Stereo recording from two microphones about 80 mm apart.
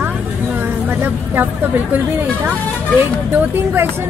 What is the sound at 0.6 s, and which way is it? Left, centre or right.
A woman's voice, right.